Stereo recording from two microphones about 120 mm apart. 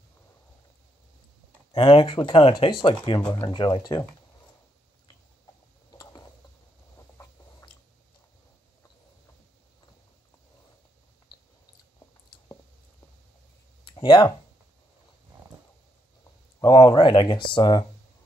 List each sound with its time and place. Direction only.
1.7 s speech: 45° left (ahead or behind)
5.9 s mechanisms: 30° left (ahead or behind)
13.8 s a sound: 45° left (ahead or behind)
16.5 s speech: 35° left (ahead or behind)